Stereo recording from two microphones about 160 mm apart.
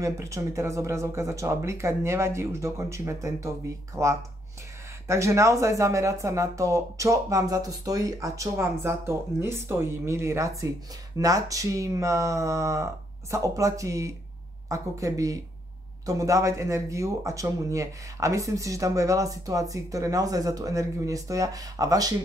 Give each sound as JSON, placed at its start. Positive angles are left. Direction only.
{"t": 0.0, "sound": "speech", "side_deg": -20}